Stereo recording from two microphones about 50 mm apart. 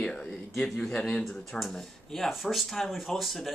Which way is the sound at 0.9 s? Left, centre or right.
Centre.